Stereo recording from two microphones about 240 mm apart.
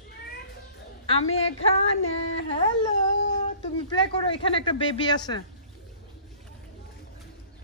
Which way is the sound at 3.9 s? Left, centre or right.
Left.